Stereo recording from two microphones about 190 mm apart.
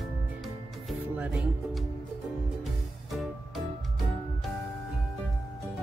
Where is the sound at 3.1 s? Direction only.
Centre (ahead or behind).